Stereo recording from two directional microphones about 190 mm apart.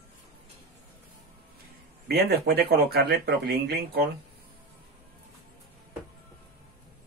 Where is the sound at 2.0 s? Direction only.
55° right (ahead or behind).